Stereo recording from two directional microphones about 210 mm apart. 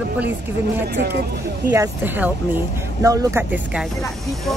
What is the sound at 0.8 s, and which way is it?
Speech, 50° right (ahead or behind).